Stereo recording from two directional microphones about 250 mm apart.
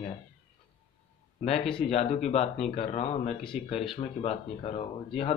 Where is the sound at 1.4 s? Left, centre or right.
Left.